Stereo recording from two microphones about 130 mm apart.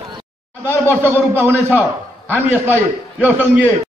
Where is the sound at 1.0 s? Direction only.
15° right (ahead or behind).